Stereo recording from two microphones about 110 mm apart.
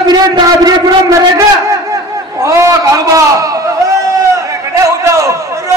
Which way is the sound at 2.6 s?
30° right (ahead or behind).